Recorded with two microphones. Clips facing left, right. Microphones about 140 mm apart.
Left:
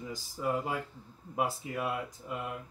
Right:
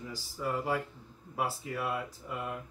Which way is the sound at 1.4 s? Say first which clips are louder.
Left 1 dB; 20° left (ahead or behind).